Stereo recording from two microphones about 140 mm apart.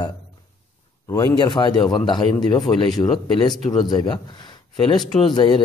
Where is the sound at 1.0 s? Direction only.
25° left (ahead or behind).